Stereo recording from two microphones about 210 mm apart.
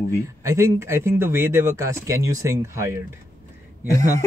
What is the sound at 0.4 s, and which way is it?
Speech, 15° right (ahead or behind).